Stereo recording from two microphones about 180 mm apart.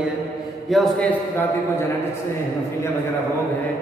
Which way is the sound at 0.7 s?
5° left (ahead or behind).